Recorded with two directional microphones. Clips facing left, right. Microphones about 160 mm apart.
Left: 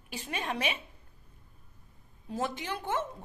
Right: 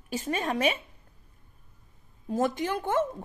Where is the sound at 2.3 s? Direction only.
45° right (ahead or behind).